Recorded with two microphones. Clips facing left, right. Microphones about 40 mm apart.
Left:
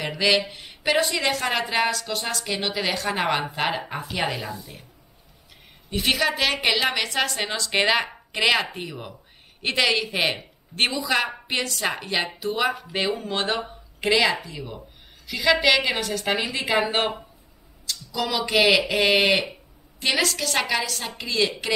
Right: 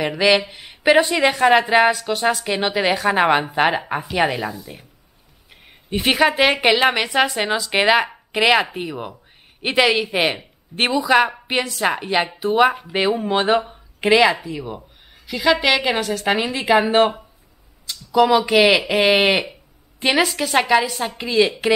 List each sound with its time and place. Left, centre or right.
0.0 s speech: centre
5.9 s a man's voice: right; by 17.1 s centre
17.8 s a sound: centre
18.4 s speech: centre